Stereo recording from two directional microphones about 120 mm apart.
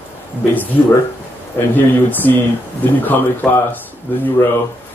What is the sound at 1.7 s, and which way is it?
Speech, 15° left (ahead or behind).